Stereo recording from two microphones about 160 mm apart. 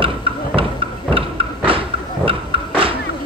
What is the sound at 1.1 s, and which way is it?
Thump, 35° right (ahead or behind).